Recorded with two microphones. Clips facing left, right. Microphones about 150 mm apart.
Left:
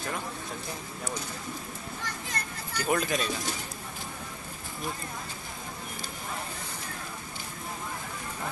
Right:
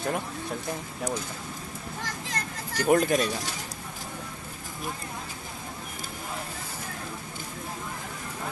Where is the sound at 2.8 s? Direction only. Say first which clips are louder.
Right 6 dB; 45° right (ahead or behind).